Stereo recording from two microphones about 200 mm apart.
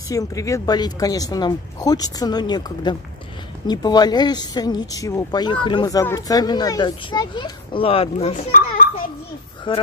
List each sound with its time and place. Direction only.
0.1 s speech: 15° left (ahead or behind)
8.5 s children playing: 45° left (ahead or behind)
9.7 s speech: 25° left (ahead or behind)